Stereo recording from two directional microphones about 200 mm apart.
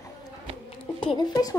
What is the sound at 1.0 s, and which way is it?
Speech, 25° left (ahead or behind).